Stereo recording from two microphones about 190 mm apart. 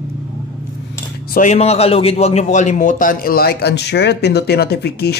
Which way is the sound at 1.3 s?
40° left (ahead or behind).